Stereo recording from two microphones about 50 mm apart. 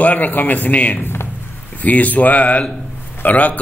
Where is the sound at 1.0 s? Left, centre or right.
Left.